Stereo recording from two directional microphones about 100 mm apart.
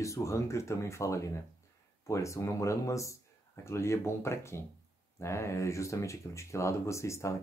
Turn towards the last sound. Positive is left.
turn(degrees=30)  # may be behind; listen again after turning